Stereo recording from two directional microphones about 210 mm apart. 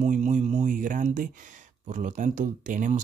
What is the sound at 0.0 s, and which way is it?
Speech, 35° right (ahead or behind).